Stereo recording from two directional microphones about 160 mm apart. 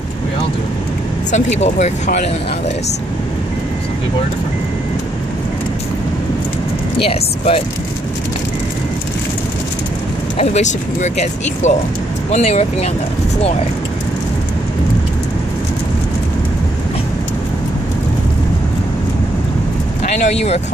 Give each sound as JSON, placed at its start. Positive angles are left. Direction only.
{"t": 1.3, "sound": "speech", "side_deg": 45}
{"t": 7.0, "sound": "speech", "side_deg": 35}
{"t": 10.3, "sound": "speech", "side_deg": 45}
{"t": 20.1, "sound": "speech", "side_deg": 45}